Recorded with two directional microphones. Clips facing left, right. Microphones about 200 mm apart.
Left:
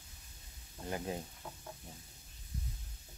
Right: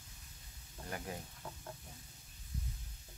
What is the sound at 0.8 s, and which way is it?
Speech, 20° left (ahead or behind).